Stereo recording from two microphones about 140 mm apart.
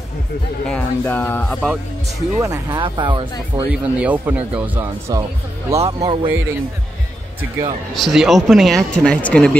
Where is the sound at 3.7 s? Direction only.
10° right (ahead or behind).